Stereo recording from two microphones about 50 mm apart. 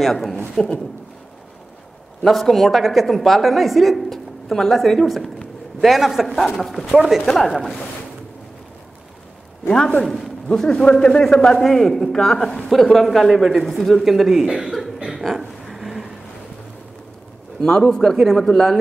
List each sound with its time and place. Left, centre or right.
0.0 s a woman's voice: centre
2.2 s a woman's voice: centre
7.2 s a woman's voice: centre
9.7 s a woman's voice: centre
10.0 s a man's voice: centre
15.1 s a sound: centre
17.6 s a woman's voice: centre